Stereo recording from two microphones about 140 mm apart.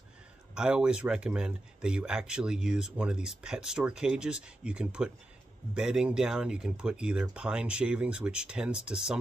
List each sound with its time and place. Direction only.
0.6 s speech: 5° right (ahead or behind)